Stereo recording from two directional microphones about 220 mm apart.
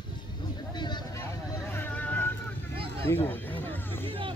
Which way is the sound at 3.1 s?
10° left (ahead or behind).